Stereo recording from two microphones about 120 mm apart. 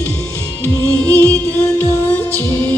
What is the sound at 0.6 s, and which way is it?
Music, 15° left (ahead or behind).